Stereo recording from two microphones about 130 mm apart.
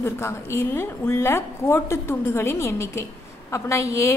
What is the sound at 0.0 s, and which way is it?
A woman's voice, 20° left (ahead or behind).